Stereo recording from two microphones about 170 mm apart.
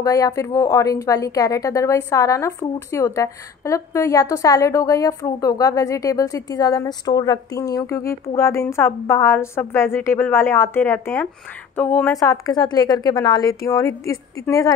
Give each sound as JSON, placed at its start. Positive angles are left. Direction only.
{"t": 0.0, "sound": "a woman's voice", "side_deg": 20}